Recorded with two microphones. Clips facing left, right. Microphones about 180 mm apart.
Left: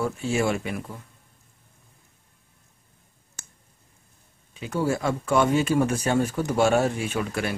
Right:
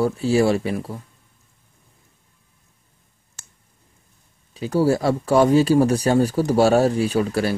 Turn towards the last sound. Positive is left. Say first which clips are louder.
# right 7 dB
turn(degrees=-35)  # may be behind; listen again after turning